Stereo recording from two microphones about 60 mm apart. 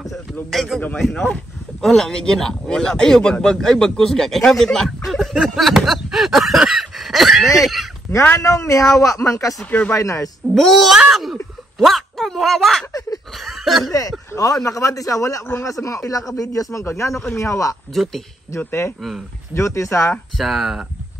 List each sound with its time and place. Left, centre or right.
0.0 s speech: centre
1.1 s speech: centre
1.8 s speech: centre
5.5 s a sound: centre
8.4 s speech: left
9.7 s speech: left
9.9 s speech: left
10.5 s speech: centre
11.0 s speech: centre
14.3 s speech: left
16.8 s speech: left
17.9 s speech: centre
19.5 s speech: left
20.3 s speech: centre